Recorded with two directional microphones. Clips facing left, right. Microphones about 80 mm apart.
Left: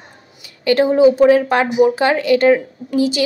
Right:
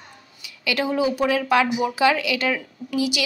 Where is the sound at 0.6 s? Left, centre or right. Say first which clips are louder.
Left 11 dB; left.